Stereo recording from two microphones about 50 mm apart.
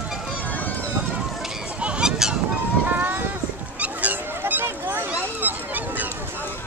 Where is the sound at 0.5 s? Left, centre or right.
Left.